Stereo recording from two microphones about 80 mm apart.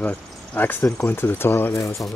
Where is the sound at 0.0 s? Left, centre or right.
Centre; by 2.0 s left.